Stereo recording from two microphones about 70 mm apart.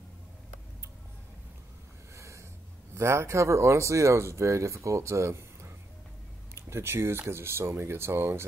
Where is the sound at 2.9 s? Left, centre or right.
Right.